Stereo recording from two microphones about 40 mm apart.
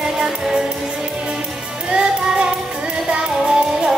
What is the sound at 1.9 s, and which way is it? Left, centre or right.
Music, right.